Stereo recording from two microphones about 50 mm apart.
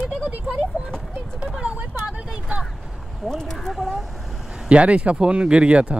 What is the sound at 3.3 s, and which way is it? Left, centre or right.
Speech, centre.